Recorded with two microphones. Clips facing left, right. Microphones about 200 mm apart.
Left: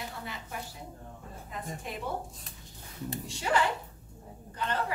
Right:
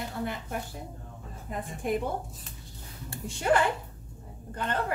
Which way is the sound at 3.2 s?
55° right (ahead or behind).